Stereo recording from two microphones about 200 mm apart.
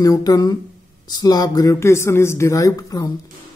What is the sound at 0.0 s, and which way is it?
Speech, 20° left (ahead or behind).